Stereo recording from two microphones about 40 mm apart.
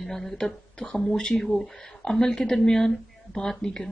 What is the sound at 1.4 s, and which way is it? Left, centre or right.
Speech, centre.